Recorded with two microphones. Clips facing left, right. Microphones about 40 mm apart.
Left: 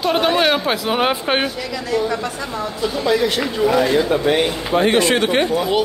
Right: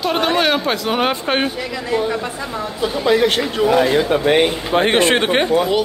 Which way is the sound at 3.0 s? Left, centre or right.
Right.